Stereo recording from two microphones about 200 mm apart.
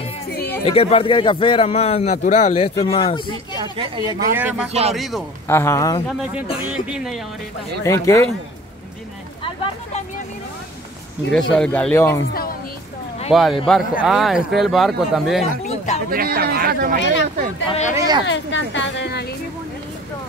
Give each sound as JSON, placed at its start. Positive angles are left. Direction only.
{"t": 0.7, "sound": "a man's voice", "side_deg": 30}
{"t": 3.7, "sound": "speech", "side_deg": -25}
{"t": 4.4, "sound": "speech", "side_deg": -10}
{"t": 5.5, "sound": "speech", "side_deg": 10}
{"t": 6.7, "sound": "speech", "side_deg": -5}
{"t": 7.8, "sound": "speech", "side_deg": 15}
{"t": 11.3, "sound": "speech", "side_deg": 5}
{"t": 13.3, "sound": "speech", "side_deg": 0}
{"t": 16.1, "sound": "speech", "side_deg": -50}
{"t": 17.6, "sound": "speech", "side_deg": 35}
{"t": 17.9, "sound": "speech", "side_deg": -20}
{"t": 18.2, "sound": "a woman's voice", "side_deg": 70}